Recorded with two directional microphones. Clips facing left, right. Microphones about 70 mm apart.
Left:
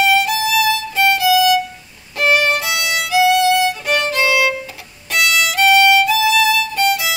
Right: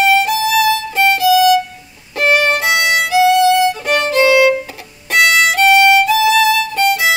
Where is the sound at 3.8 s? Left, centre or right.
Right.